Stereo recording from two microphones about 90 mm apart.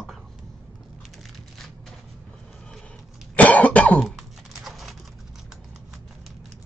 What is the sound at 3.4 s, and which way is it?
Cough, 15° left (ahead or behind).